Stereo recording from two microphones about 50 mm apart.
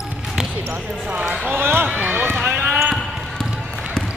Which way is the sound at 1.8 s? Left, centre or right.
Right.